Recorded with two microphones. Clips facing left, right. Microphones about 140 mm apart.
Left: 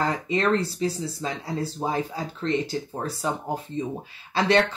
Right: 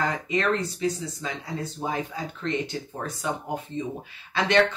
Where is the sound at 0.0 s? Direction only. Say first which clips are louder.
Left 2 dB; 35° left (ahead or behind).